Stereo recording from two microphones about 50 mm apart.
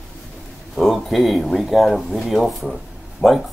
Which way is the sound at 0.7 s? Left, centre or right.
Centre.